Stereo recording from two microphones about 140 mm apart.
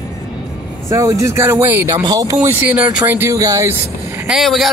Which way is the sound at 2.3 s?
15° right (ahead or behind).